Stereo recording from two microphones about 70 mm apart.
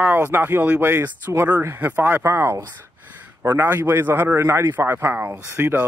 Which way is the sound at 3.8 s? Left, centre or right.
Right.